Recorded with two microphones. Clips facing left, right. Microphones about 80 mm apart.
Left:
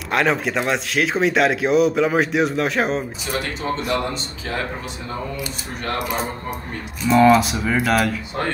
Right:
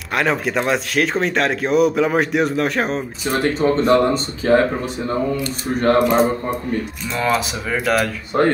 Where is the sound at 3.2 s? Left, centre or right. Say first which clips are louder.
Right 7 dB; right.